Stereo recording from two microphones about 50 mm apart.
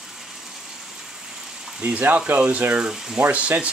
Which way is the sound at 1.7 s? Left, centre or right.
Right.